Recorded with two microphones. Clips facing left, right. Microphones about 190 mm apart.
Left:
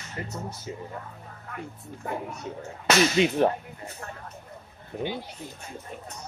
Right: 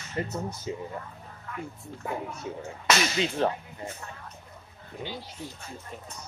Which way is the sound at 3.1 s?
20° left (ahead or behind).